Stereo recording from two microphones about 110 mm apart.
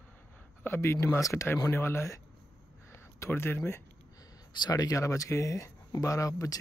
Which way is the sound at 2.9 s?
25° left (ahead or behind).